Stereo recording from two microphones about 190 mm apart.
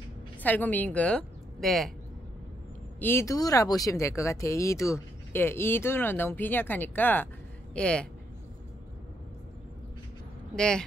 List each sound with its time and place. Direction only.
0.4 s a woman's voice: 10° left (ahead or behind)
3.0 s speech: 10° left (ahead or behind)
10.5 s speech: 5° left (ahead or behind)